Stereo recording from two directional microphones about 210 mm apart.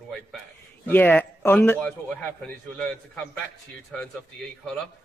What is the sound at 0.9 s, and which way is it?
A man's voice, 10° left (ahead or behind).